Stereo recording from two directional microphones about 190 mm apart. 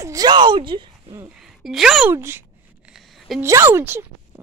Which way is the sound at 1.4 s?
Centre (ahead or behind).